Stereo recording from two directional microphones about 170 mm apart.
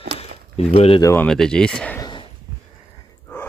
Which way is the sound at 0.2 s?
35° left (ahead or behind).